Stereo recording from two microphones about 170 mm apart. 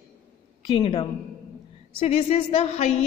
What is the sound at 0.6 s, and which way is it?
Speech, 25° left (ahead or behind).